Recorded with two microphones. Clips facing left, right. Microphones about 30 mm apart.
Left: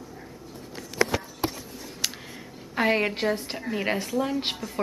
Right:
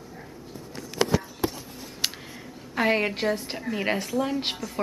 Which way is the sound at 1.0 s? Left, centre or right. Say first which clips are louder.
Right 2 dB; left.